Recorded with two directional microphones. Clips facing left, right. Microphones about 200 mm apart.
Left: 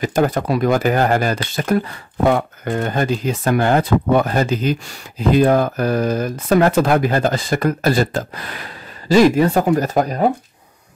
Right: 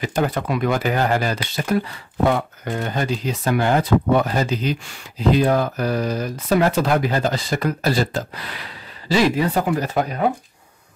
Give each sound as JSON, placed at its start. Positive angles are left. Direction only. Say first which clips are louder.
{"t": 0.0, "sound": "speech", "louder": "left 4 dB", "side_deg": 45}